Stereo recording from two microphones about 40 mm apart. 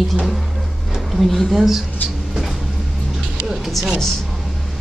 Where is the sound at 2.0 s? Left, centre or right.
Left.